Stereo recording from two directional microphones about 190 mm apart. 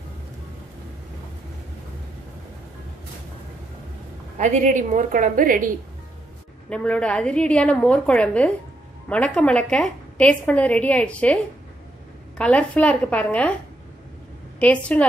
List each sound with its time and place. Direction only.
4.4 s a woman's voice: 40° right (ahead or behind)
6.7 s a woman's voice: 5° left (ahead or behind)
12.4 s a woman's voice: 5° left (ahead or behind)
14.6 s a woman's voice: 5° left (ahead or behind)